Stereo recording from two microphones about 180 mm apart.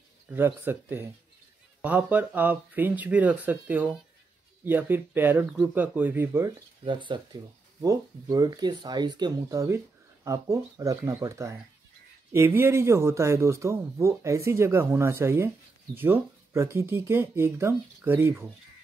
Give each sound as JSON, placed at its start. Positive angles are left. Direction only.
{"t": 0.3, "sound": "a man's voice", "side_deg": -10}
{"t": 6.8, "sound": "a man's voice", "side_deg": -25}